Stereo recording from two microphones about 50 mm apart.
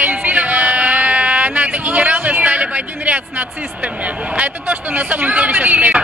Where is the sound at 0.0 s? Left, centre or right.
Right.